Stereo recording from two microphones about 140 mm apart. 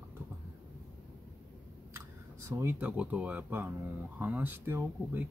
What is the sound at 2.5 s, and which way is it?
Speech, 15° right (ahead or behind).